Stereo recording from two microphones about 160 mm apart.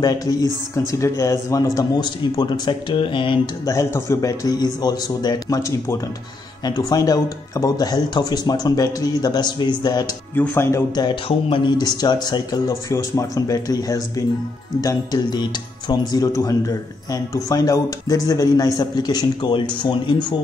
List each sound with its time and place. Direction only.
0.0 s speech: 25° left (ahead or behind)
3.7 s speech: 20° left (ahead or behind)
10.3 s speech: 10° left (ahead or behind)
11.2 s speech: 35° left (ahead or behind)